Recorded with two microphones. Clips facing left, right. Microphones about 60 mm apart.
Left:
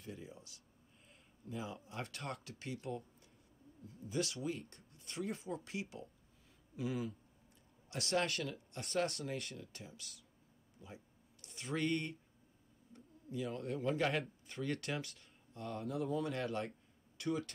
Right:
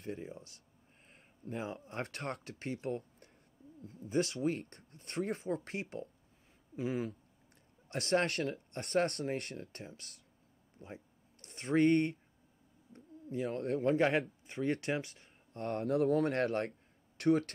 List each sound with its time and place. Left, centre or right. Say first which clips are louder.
0.0 s speech: right 7 dB; right
2.8 s speech: right 6 dB; right
13.9 s speech: right 6 dB; right
15.5 s speech: right 8 dB; right